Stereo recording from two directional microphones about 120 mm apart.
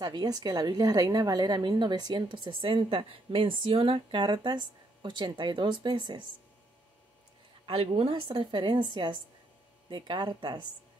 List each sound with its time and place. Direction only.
0.0 s a woman's voice: 35° right (ahead or behind)
7.6 s a woman's voice: 55° right (ahead or behind); by 10.7 s 35° right (ahead or behind)